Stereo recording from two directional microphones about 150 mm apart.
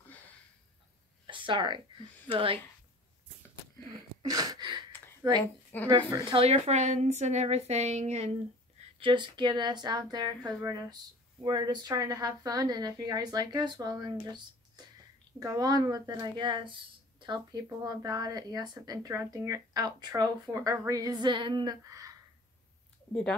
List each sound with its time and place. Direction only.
1.2 s a sound: 35° right (ahead or behind)
2.3 s a woman's voice: 35° right (ahead or behind)
4.2 s a sound: 25° right (ahead or behind)
5.2 s speech: 30° right (ahead or behind)
5.7 s speech: 15° left (ahead or behind)
6.3 s a woman's voice: 40° right (ahead or behind)
9.0 s speech: 30° right (ahead or behind)